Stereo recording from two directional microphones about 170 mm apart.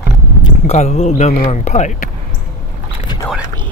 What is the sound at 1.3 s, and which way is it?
Speech, 55° left (ahead or behind).